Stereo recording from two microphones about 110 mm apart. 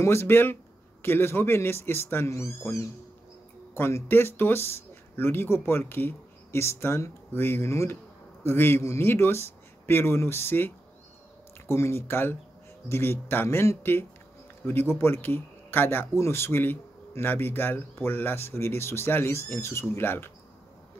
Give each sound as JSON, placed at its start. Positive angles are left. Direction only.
{"t": 0.0, "sound": "speech", "side_deg": 20}